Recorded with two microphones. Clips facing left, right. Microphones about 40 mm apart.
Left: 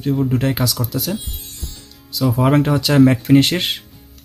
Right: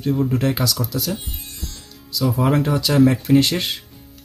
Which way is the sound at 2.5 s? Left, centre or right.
Left.